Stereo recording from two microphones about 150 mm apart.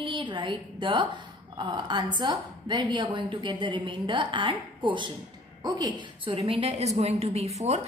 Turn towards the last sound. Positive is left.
turn(degrees=-45)  # may be behind; listen again after turning